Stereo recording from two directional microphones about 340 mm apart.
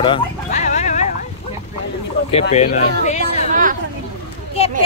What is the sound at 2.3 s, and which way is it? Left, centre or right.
Speech, centre.